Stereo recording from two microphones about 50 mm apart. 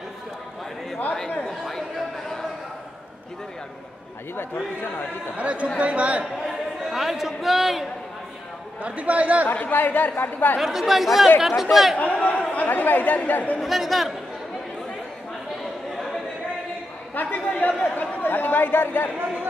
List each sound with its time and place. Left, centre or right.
1.7 s chatter: centre
4.4 s a man's voice: left
5.3 s a man's voice: right
6.5 s a man's voice: centre
8.8 s a man's voice: right
9.5 s speech: left
10.6 s a man's voice: centre
12.2 s chatter: left
12.6 s speech: left
13.6 s a man's voice: centre
17.1 s chatter: left